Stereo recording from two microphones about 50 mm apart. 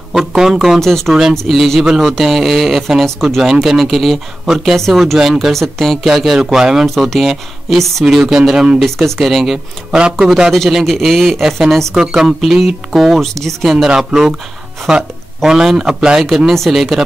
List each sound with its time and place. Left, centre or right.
0.1 s a man's voice: centre
0.7 s speech: centre
1.5 s a man's voice: centre
5.5 s a man's voice: centre
8.8 s a man's voice: centre
9.8 s speech: centre
10.1 s a man's voice: centre
11.9 s speech: centre
12.4 s a man's voice: centre
13.8 s speech: centre
16.2 s a man's voice: centre